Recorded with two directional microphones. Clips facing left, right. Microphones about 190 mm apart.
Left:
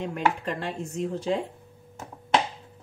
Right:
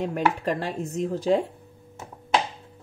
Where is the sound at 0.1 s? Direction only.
40° right (ahead or behind).